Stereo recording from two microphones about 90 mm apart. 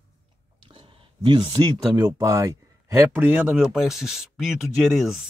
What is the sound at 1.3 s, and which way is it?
Speech, 65° right (ahead or behind).